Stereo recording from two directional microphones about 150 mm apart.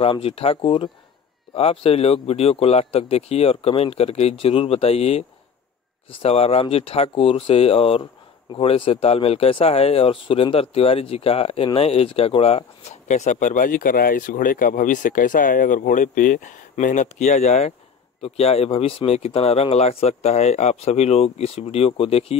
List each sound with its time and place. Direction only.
0.0 s speech: 40° left (ahead or behind)